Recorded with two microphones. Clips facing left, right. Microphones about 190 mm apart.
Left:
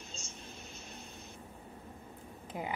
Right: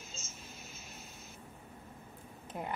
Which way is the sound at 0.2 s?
5° right (ahead or behind).